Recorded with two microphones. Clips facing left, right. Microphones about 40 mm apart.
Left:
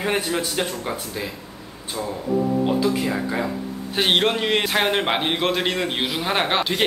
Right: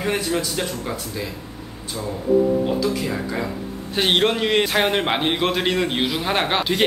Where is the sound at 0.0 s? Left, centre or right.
Centre.